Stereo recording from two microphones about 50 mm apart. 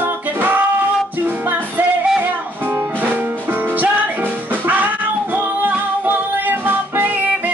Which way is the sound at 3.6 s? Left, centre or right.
Right.